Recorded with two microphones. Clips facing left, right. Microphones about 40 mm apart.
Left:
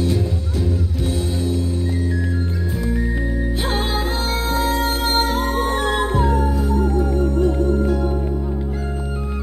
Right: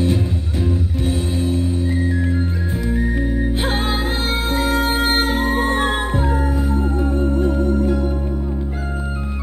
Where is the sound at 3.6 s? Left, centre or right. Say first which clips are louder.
Right 1 dB; right.